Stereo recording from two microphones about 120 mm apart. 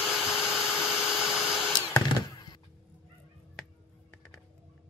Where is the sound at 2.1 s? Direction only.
35° left (ahead or behind).